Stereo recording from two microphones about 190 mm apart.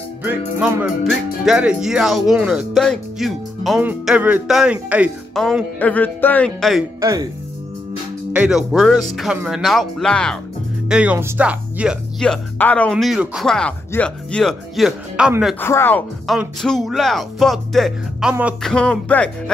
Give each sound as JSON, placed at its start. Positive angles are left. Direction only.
{"t": 0.6, "sound": "speech", "side_deg": -5}
{"t": 7.0, "sound": "speech", "side_deg": -15}
{"t": 8.3, "sound": "speech", "side_deg": -5}
{"t": 12.9, "sound": "speech", "side_deg": -5}
{"t": 15.6, "sound": "speech", "side_deg": 10}
{"t": 16.3, "sound": "speech", "side_deg": 0}